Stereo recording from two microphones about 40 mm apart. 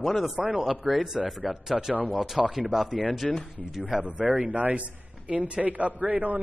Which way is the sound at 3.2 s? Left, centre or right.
Centre.